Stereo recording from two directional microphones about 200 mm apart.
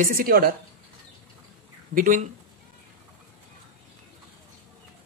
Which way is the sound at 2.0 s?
40° right (ahead or behind).